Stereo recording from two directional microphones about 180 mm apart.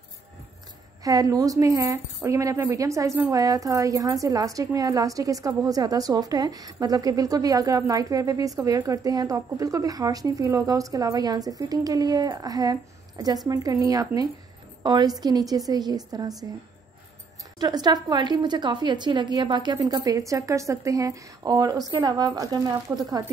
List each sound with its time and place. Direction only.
1.0 s speech: 20° right (ahead or behind)
17.6 s speech: 20° right (ahead or behind)